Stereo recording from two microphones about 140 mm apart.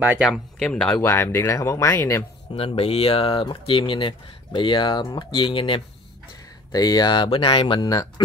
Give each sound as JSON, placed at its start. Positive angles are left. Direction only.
{"t": 0.2, "sound": "speech", "side_deg": 0}
{"t": 0.9, "sound": "speech", "side_deg": 15}
{"t": 2.5, "sound": "speech", "side_deg": 45}
{"t": 6.7, "sound": "speech", "side_deg": 25}